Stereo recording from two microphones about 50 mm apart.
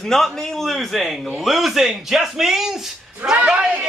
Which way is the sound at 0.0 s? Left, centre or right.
Centre.